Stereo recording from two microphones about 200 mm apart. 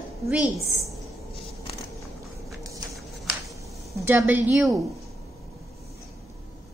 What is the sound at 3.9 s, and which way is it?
Speech, 10° right (ahead or behind).